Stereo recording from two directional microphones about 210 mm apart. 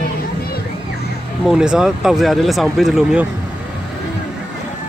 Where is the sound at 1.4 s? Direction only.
5° right (ahead or behind).